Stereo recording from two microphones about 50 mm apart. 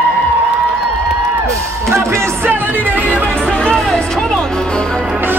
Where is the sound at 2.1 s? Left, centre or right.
Right.